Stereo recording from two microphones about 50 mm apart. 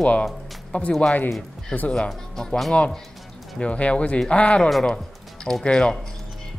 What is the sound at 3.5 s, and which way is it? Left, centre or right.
Speech, left.